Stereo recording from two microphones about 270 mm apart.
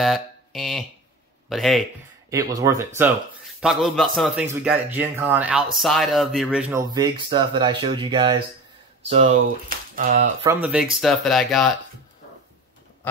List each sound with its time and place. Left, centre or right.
0.0 s a sound: centre
1.5 s speech: centre
2.2 s speech: centre
3.6 s speech: centre; by 10.3 s right
10.4 s speech: centre